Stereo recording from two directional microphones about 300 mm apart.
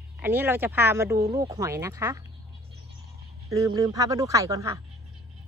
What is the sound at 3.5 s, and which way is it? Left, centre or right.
Speech, centre.